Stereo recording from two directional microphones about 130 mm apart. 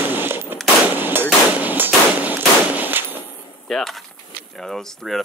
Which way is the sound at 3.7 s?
Centre (ahead or behind).